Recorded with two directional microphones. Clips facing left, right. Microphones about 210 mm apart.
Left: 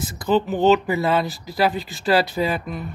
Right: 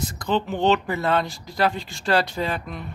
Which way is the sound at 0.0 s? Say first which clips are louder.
Left 4 dB; 5° left (ahead or behind).